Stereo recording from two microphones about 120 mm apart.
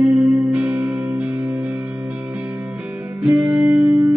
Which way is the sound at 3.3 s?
30° right (ahead or behind).